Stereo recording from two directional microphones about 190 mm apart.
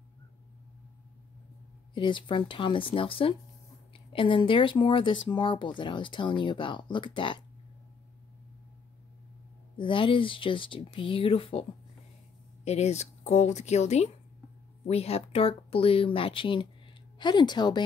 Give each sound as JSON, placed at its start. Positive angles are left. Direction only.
{"t": 2.0, "sound": "speech", "side_deg": 25}
{"t": 9.8, "sound": "speech", "side_deg": 25}
{"t": 12.6, "sound": "a woman's voice", "side_deg": 35}